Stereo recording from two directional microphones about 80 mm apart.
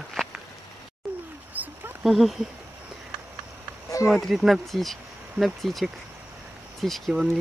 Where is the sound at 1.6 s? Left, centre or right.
Right.